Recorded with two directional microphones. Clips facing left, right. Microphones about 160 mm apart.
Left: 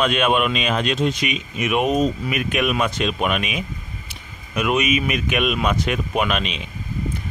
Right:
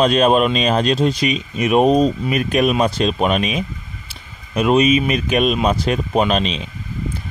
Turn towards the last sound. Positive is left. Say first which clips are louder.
# right 5 dB
turn(degrees=-35)  # may be behind; listen again after turning